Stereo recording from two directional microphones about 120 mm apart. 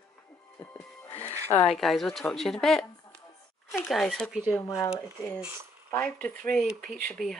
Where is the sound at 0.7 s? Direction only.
20° left (ahead or behind).